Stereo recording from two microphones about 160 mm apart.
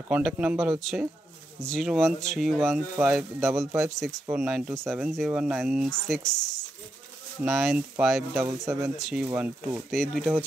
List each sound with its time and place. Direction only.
0.1 s speech: 10° right (ahead or behind)
9.8 s speech: 5° left (ahead or behind)